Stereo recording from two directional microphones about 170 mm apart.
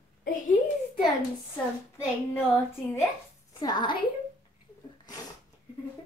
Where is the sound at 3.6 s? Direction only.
25° left (ahead or behind).